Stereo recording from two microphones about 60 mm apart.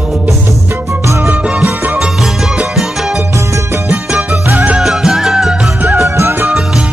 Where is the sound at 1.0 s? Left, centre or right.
Right.